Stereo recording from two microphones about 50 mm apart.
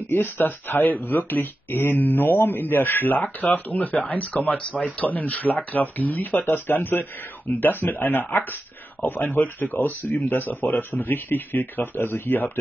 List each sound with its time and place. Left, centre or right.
0.1 s speech: left